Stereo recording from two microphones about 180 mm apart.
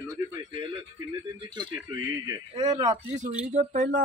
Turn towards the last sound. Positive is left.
turn(degrees=-45)  # may be behind; listen again after turning